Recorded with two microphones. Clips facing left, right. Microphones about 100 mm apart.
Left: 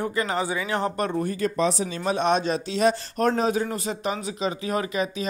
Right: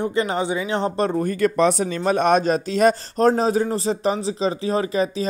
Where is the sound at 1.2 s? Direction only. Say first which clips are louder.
Right 7 dB; 60° right (ahead or behind).